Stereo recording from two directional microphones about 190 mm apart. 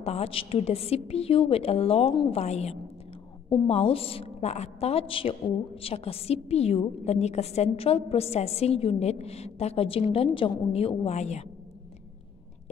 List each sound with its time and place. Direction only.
0.0 s a woman's voice: 30° left (ahead or behind)